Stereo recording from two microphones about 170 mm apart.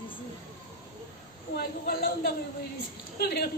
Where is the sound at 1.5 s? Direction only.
60° left (ahead or behind).